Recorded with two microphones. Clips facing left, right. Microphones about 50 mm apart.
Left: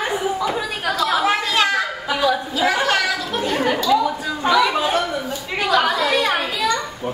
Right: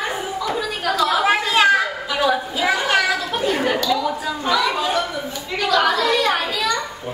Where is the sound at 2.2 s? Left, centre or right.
Centre.